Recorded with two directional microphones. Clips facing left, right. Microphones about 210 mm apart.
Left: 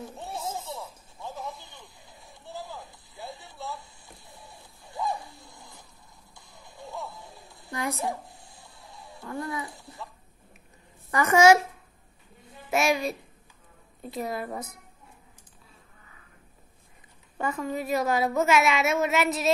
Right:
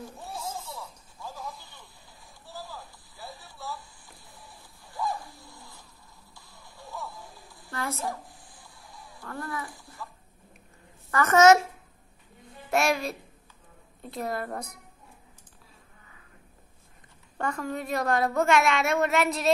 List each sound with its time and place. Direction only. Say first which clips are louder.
0.2 s a sound: left 3 dB; 25° left (ahead or behind)
5.3 s dog: even; 20° left (ahead or behind)
6.3 s music: left 4 dB; 20° left (ahead or behind)
7.6 s a sound: left 2 dB; 15° left (ahead or behind)
11.1 s a child's voice: even; 15° left (ahead or behind)
12.7 s a woman's voice: left 1 dB; centre (ahead or behind)
17.4 s a woman's voice: left 1 dB; centre (ahead or behind)